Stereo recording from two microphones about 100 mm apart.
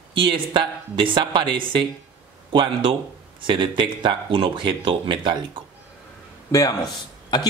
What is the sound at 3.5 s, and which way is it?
Speech, 55° right (ahead or behind).